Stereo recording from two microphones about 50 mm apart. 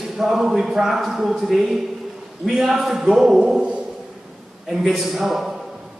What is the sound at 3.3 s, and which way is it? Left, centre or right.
Speech, centre.